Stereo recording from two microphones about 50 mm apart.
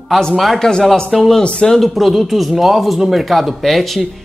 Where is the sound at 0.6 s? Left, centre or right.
Centre.